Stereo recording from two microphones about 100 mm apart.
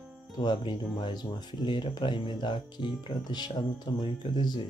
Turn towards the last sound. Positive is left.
turn(degrees=45)  # may be behind; listen again after turning